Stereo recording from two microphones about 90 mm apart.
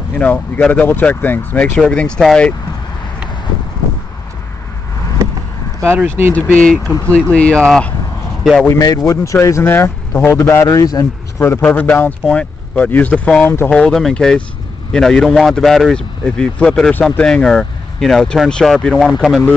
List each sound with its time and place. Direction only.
0.1 s speech: 15° left (ahead or behind)
1.8 s speech: 10° left (ahead or behind)
5.9 s speech: 25° right (ahead or behind)
6.3 s speech: 15° left (ahead or behind)
8.6 s speech: 40° left (ahead or behind)
11.6 s a man's voice: 20° left (ahead or behind)
13.7 s speech: 5° left (ahead or behind)